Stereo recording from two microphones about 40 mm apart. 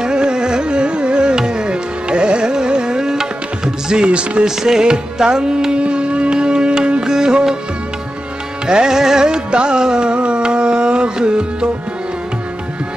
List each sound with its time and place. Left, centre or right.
0.0 s carnatic music: right
4.5 s music: centre
8.6 s music: centre